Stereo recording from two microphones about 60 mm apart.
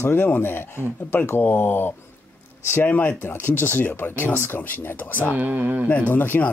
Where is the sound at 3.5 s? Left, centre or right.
Left.